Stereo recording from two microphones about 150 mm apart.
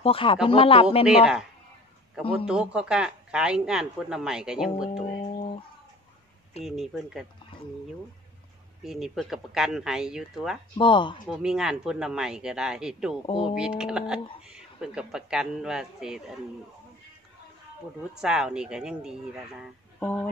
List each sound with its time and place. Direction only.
0.0 s speech: 35° left (ahead or behind)
1.0 s speech: 5° right (ahead or behind)
2.4 s speech: 5° right (ahead or behind)
6.6 s speech: centre (ahead or behind)
8.8 s speech: centre (ahead or behind)
10.8 s speech: 35° left (ahead or behind)
11.2 s speech: 5° right (ahead or behind)
18.2 s speech: 5° right (ahead or behind)
20.0 s speech: 10° left (ahead or behind)